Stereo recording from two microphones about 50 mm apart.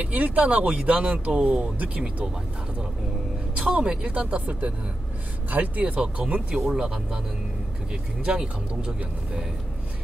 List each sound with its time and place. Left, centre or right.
0.0 s speech: right
3.5 s speech: right
6.7 s speech: centre
8.2 s speech: right